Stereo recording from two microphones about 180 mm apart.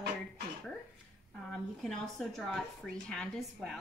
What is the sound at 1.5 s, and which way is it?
A woman's voice, centre (ahead or behind).